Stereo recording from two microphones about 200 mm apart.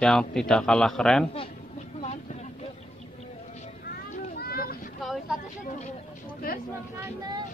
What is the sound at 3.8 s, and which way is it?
Boat, 45° left (ahead or behind).